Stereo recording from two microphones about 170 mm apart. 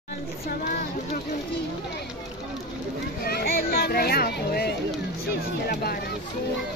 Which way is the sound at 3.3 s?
65° left (ahead or behind).